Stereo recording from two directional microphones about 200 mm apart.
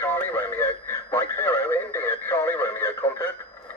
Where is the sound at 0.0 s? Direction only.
10° left (ahead or behind).